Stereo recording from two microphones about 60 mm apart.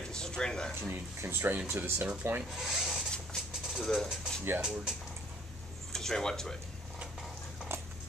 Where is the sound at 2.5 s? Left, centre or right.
Centre.